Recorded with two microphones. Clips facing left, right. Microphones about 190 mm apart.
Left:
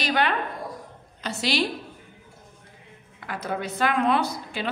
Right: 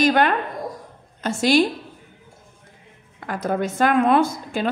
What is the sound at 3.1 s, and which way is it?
A woman's voice, 45° right (ahead or behind).